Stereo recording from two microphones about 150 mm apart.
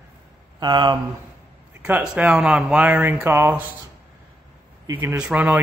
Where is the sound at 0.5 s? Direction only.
30° right (ahead or behind).